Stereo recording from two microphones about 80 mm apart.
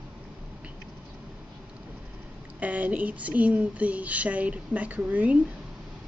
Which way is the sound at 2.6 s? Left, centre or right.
Centre.